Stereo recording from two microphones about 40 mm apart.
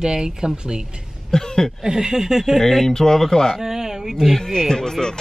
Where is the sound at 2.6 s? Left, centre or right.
Centre.